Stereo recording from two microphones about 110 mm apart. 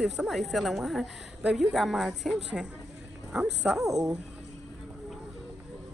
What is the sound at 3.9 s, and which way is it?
Speech, 30° right (ahead or behind).